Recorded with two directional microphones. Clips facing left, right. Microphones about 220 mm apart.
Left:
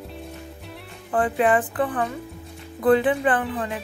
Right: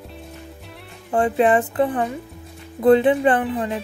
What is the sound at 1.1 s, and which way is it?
Speech, 25° right (ahead or behind).